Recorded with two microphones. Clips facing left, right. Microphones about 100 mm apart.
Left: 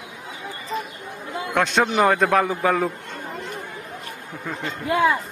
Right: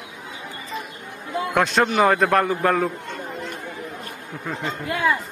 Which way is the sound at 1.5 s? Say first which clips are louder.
Even; centre (ahead or behind).